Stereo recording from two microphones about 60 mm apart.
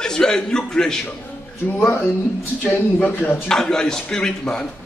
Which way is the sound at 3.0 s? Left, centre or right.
Left.